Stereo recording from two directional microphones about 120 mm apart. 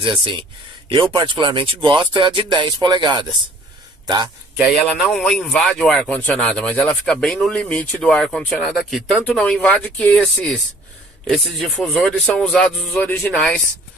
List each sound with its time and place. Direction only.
0.0 s speech: 45° right (ahead or behind)
5.1 s speech: 5° left (ahead or behind)